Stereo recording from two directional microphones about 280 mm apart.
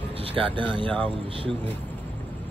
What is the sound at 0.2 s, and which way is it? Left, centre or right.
Speech, centre.